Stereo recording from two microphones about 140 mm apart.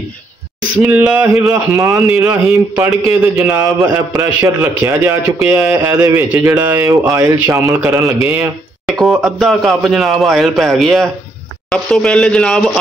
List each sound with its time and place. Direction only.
0.7 s a man's voice: 10° right (ahead or behind)
1.3 s speech: 20° right (ahead or behind)
2.4 s a man's voice: 5° right (ahead or behind)
3.1 s a man's voice: 20° right (ahead or behind)
8.8 s a sound: centre (ahead or behind)
9.2 s a man's voice: centre (ahead or behind)